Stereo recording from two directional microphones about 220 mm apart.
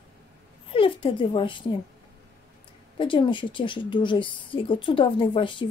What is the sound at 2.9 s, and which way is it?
A woman's voice, 20° left (ahead or behind).